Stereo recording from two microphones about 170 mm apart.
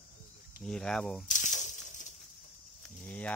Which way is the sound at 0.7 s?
5° left (ahead or behind).